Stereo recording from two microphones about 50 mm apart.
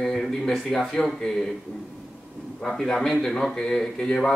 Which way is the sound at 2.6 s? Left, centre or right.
Centre.